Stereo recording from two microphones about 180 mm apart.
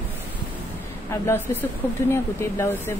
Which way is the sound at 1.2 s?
10° left (ahead or behind).